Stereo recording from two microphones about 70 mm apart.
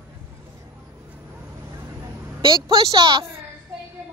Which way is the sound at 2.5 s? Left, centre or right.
Right.